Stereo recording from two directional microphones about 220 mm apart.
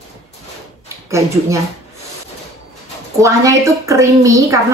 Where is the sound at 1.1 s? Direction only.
15° right (ahead or behind).